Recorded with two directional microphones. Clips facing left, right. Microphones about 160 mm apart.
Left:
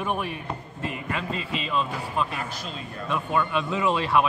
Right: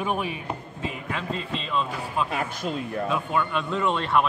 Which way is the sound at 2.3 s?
55° right (ahead or behind).